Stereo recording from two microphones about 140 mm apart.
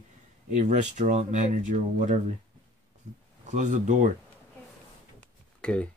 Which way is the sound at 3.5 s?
60° right (ahead or behind).